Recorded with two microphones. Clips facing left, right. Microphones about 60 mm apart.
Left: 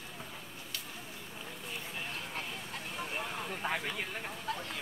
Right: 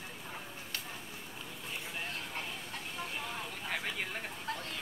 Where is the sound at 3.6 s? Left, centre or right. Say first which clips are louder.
Left 4 dB; left.